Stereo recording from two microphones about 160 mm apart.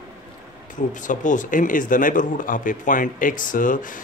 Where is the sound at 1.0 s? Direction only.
55° left (ahead or behind).